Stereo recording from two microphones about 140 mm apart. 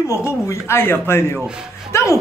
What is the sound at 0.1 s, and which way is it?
A man's voice, 20° left (ahead or behind).